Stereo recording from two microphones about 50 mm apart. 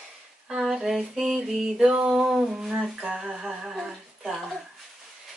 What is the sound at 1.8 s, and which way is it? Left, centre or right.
Speech, centre.